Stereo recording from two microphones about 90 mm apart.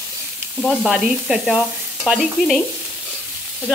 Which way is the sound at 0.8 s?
5° right (ahead or behind).